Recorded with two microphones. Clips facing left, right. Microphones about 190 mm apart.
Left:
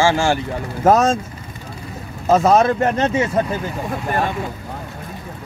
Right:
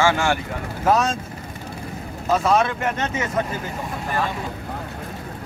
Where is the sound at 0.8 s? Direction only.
45° left (ahead or behind).